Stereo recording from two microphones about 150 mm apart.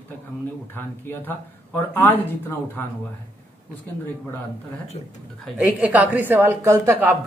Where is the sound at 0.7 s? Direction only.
15° left (ahead or behind).